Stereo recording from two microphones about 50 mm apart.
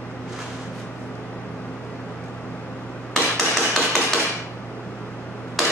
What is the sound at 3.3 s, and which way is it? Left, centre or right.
Hammer, centre.